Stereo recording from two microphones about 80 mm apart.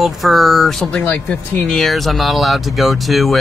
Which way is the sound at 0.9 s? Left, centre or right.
Centre.